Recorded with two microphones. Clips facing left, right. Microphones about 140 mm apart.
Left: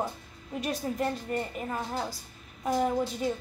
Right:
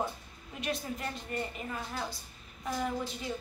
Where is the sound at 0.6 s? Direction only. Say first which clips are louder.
Left 5 dB; 40° left (ahead or behind).